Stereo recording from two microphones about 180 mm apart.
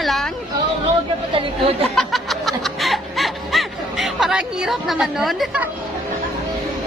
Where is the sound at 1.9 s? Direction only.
Centre (ahead or behind).